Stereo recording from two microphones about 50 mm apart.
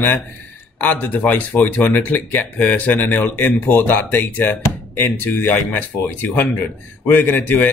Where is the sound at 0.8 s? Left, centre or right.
Left.